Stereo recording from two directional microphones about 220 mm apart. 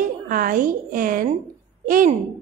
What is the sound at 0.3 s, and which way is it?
A woman's voice, 40° right (ahead or behind).